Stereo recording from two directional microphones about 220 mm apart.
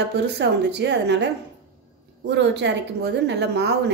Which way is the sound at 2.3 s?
50° right (ahead or behind).